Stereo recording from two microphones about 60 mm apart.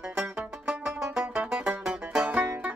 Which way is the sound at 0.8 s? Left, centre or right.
Centre.